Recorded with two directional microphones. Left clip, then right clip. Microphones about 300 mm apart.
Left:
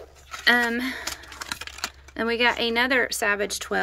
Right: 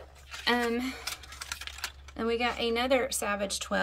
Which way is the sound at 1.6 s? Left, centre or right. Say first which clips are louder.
Left 5 dB; left.